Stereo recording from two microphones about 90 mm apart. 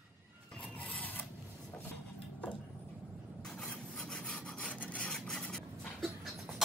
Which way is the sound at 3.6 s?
10° left (ahead or behind).